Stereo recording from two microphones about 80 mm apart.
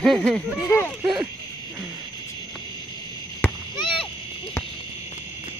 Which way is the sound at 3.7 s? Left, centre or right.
Left.